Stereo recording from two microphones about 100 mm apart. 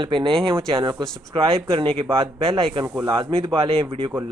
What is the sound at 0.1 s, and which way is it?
Speech, 55° right (ahead or behind).